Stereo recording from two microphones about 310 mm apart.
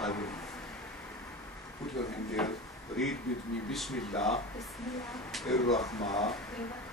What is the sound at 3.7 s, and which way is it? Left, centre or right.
Speech, centre.